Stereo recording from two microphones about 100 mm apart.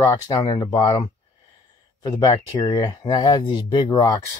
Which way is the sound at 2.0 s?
35° left (ahead or behind).